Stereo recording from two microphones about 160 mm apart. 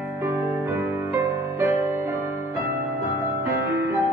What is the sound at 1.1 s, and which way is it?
Music, 15° right (ahead or behind).